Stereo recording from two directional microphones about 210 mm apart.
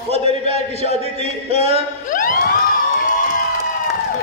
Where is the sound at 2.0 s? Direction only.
40° left (ahead or behind).